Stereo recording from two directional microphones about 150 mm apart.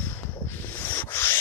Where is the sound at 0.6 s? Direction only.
15° left (ahead or behind).